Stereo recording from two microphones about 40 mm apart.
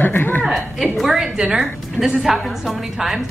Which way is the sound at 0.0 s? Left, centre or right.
Left.